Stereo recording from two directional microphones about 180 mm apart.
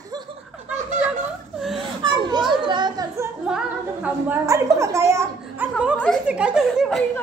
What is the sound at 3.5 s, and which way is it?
A woman's voice, 5° right (ahead or behind).